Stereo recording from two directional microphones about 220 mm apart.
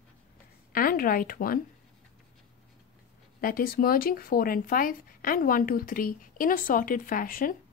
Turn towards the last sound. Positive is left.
turn(degrees=40)  # may be behind; listen again after turning